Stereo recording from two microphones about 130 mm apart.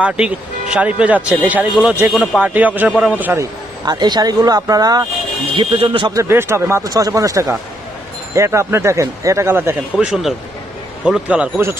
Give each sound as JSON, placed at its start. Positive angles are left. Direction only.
{"t": 0.0, "sound": "speech", "side_deg": -10}
{"t": 3.8, "sound": "speech", "side_deg": -30}
{"t": 5.5, "sound": "speech", "side_deg": -45}
{"t": 6.1, "sound": "speech", "side_deg": -20}
{"t": 9.9, "sound": "a man's voice", "side_deg": -5}